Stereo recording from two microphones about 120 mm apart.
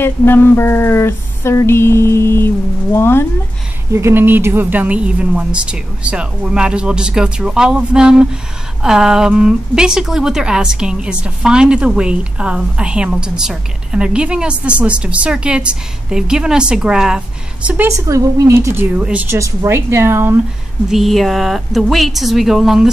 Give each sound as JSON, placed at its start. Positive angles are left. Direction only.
{"t": 0.0, "sound": "a sound", "side_deg": 20}
{"t": 3.9, "sound": "a woman's voice", "side_deg": -20}
{"t": 17.8, "sound": "a woman's voice", "side_deg": -25}
{"t": 19.3, "sound": "a woman's voice", "side_deg": -25}
{"t": 20.9, "sound": "a woman's voice", "side_deg": 0}